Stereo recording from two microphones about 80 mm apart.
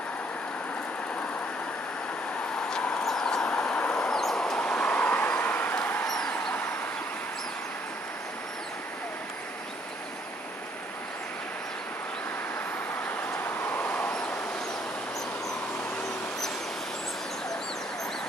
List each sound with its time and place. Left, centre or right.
2.8 s vehicle: centre
4.1 s vehicle: centre; by 6.0 s left
6.0 s a sound: centre
6.3 s vehicle: centre
13.3 s vehicle: left